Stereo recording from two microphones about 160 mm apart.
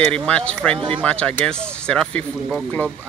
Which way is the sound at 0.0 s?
5° left (ahead or behind).